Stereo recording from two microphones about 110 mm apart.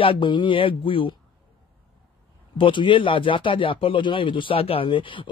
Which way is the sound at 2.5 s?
50° left (ahead or behind).